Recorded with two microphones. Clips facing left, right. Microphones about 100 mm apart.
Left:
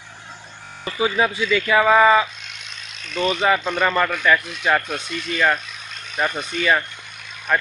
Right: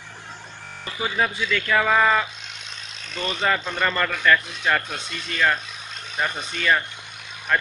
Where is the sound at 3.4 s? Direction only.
15° left (ahead or behind).